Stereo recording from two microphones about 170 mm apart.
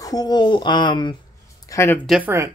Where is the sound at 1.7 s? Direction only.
15° left (ahead or behind).